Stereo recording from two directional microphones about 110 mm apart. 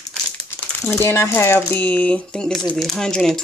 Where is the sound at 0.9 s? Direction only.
25° left (ahead or behind).